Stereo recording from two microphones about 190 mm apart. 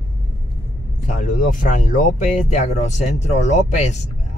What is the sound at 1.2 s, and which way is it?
Speech, 40° left (ahead or behind).